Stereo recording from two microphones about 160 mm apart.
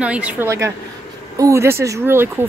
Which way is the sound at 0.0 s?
10° right (ahead or behind).